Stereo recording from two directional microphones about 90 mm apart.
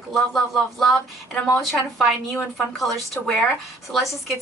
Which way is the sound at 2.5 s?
Centre (ahead or behind).